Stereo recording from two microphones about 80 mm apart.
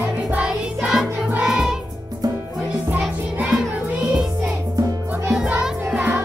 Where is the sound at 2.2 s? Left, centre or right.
Right.